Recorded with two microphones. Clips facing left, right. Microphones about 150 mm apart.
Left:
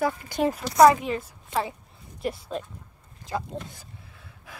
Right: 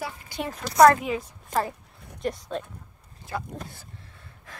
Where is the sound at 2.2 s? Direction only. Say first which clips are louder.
Right 1 dB; 5° left (ahead or behind).